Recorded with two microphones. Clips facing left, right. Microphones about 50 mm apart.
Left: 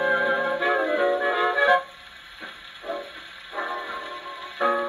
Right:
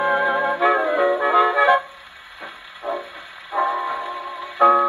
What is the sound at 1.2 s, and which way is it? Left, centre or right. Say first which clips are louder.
Music: right 5 dB; centre.